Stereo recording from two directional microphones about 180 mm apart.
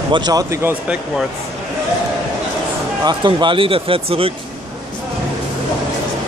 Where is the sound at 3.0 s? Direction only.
25° right (ahead or behind).